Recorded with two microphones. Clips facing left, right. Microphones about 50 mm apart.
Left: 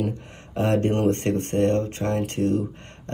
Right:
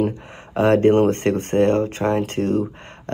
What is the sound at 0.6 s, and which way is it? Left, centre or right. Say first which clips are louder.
Speech: right 7 dB; right.